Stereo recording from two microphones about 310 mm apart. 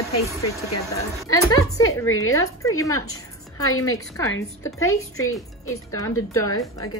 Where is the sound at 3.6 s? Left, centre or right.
Left.